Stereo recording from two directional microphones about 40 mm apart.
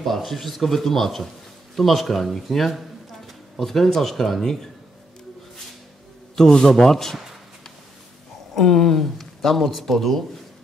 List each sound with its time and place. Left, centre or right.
0.0 s speech: centre
6.3 s speech: centre
8.5 s speech: centre